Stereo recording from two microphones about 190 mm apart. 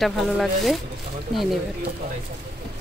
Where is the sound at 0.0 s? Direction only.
Centre (ahead or behind).